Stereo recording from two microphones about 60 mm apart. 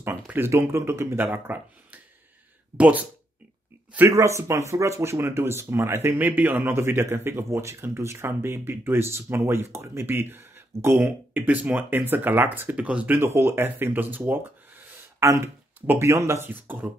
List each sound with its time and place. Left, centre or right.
0.5 s a man's voice: right
1.1 s speech: right
4.1 s a man's voice: right
6.1 s a man's voice: right
10.0 s speech: right
13.2 s speech: right
15.1 s a sound: right
16.1 s speech: right
16.4 s speech: right